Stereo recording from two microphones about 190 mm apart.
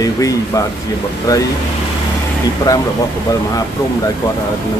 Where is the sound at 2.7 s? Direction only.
15° left (ahead or behind).